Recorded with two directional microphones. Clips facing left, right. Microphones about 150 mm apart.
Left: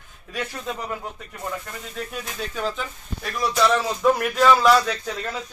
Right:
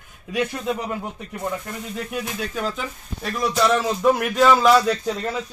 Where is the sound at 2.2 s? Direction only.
10° right (ahead or behind).